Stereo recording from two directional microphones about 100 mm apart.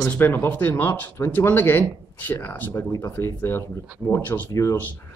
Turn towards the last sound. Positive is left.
turn(degrees=30)  # may be behind; listen again after turning